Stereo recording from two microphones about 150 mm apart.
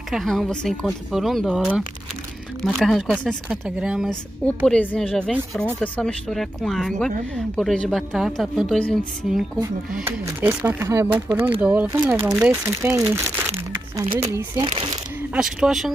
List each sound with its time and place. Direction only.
0.1 s speech: centre (ahead or behind)
4.6 s speech: 5° left (ahead or behind); by 14.7 s 25° right (ahead or behind)
14.7 s speech: 35° right (ahead or behind)
15.3 s speech: 5° right (ahead or behind)